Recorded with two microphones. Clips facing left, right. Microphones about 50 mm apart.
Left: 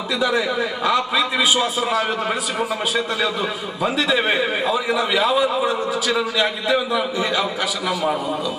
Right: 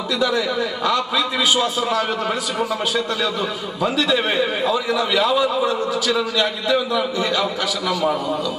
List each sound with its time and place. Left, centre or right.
0.2 s a man's voice: centre
3.8 s a man's voice: centre